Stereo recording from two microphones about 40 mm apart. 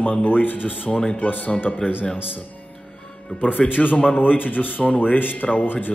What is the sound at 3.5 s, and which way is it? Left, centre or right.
Speech, left.